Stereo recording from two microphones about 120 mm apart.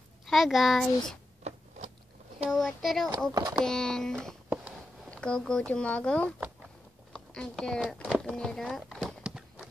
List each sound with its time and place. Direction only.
0.3 s a child's voice: centre (ahead or behind)
2.5 s a child's voice: centre (ahead or behind)
3.3 s speech: 30° right (ahead or behind)
3.6 s a child's voice: 5° left (ahead or behind)
7.1 s a sound: 5° left (ahead or behind)
7.8 s speech: centre (ahead or behind)
8.4 s horse: 5° left (ahead or behind)